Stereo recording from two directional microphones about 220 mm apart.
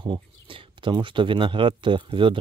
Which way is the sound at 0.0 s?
25° right (ahead or behind).